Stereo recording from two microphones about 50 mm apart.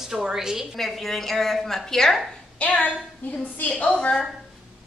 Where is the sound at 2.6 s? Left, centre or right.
Left.